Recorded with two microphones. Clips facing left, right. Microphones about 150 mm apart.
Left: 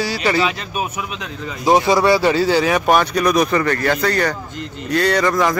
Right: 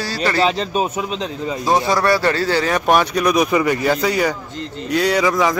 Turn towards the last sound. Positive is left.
turn(degrees=-5)  # may be behind; listen again after turning